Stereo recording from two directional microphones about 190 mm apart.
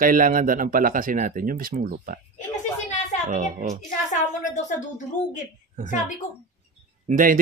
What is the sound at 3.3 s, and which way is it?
Speech, 40° right (ahead or behind).